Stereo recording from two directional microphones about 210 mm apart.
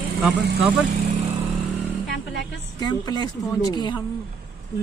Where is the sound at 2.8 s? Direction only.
20° left (ahead or behind).